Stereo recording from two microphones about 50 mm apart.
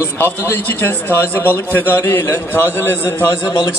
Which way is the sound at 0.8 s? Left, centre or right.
Left.